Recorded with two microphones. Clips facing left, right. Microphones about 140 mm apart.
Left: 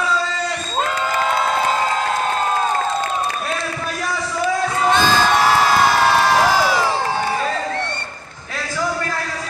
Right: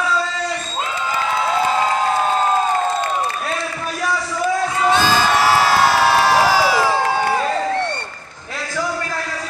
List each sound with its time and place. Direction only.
0.8 s cheering: 65° left (ahead or behind)
4.9 s crowd: 5° right (ahead or behind)